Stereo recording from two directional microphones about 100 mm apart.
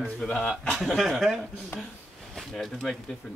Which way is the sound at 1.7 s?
25° left (ahead or behind).